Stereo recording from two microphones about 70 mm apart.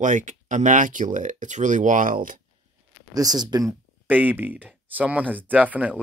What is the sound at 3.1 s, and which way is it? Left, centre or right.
Speech, right.